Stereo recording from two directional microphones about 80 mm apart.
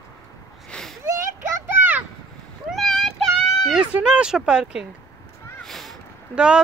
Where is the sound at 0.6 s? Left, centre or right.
Centre.